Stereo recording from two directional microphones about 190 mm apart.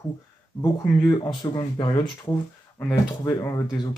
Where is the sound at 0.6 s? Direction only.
20° left (ahead or behind).